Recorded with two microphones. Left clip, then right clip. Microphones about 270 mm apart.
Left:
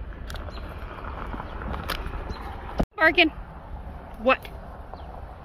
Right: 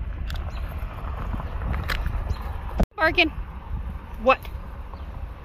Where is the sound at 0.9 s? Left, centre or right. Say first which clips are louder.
Left 1 dB; right.